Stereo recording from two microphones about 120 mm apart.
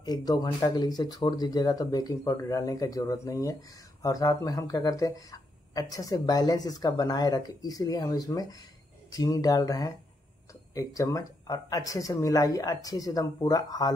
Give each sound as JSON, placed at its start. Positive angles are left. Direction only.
{"t": 0.0, "sound": "speech", "side_deg": 30}